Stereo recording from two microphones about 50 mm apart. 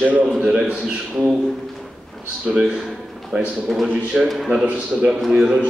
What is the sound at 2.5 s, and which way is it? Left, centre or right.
Speech, centre.